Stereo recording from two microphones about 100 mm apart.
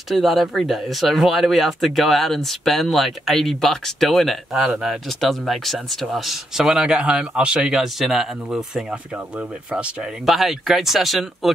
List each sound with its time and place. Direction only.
0.1 s speech: centre (ahead or behind)
10.2 s speech: centre (ahead or behind)